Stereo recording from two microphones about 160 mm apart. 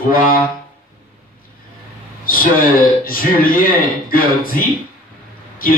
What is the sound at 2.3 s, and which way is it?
A man's voice, 65° left (ahead or behind).